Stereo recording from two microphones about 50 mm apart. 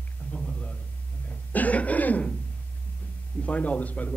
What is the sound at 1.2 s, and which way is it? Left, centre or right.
Cough, left.